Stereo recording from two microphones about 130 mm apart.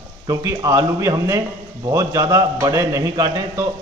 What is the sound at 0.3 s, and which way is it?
Speech, 25° right (ahead or behind).